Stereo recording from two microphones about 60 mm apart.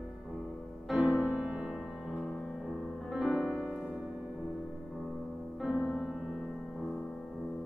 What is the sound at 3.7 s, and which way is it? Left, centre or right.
Music, centre.